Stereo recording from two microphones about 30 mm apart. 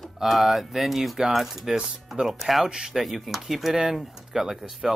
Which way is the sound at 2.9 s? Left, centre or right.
Centre.